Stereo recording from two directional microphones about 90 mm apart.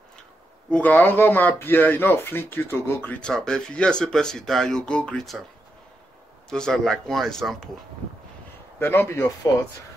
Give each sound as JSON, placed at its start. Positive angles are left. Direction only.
{"t": 0.7, "sound": "speech", "side_deg": 10}
{"t": 0.9, "sound": "speech", "side_deg": 25}
{"t": 3.1, "sound": "speech", "side_deg": 10}
{"t": 6.5, "sound": "speech", "side_deg": 5}
{"t": 8.7, "sound": "speech", "side_deg": 25}